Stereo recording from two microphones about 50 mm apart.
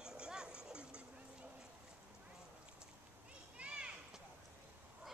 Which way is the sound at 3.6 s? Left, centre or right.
Right.